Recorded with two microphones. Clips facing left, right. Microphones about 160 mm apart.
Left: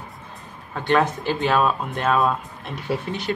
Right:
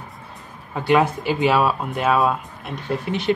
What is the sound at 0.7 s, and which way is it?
Speech, 10° right (ahead or behind).